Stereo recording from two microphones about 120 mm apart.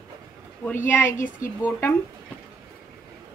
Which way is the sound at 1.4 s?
20° left (ahead or behind).